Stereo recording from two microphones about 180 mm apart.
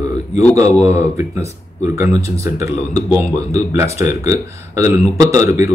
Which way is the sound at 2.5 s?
10° right (ahead or behind).